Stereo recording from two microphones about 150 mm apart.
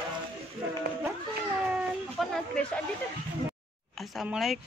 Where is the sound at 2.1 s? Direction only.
5° left (ahead or behind).